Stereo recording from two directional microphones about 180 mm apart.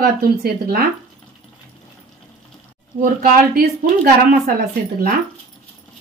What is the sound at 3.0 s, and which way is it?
A woman's voice, 55° right (ahead or behind).